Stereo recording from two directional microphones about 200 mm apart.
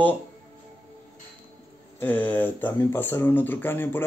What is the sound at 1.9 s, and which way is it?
Speech, 10° left (ahead or behind).